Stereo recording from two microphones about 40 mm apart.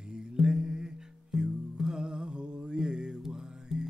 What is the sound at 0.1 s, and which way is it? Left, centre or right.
Music, centre.